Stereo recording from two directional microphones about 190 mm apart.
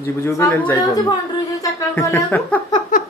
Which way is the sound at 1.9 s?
10° left (ahead or behind).